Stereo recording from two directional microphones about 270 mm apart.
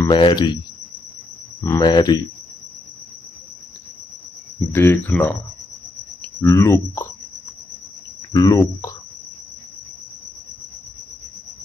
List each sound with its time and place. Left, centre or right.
0.0 s speech: centre
1.6 s speech: centre
4.7 s speech: centre
6.4 s speech: centre
8.3 s speech: centre